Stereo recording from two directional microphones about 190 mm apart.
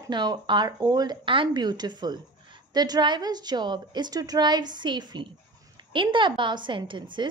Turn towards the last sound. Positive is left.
turn(degrees=-25)  # may be behind; listen again after turning